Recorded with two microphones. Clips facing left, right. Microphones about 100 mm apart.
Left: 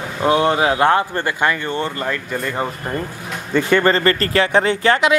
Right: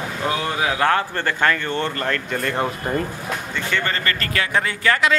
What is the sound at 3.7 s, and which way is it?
Speech, 40° left (ahead or behind).